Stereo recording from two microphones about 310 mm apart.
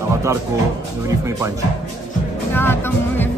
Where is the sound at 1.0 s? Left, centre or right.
Centre.